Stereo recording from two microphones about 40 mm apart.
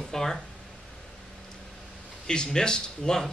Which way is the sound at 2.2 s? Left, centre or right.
Centre.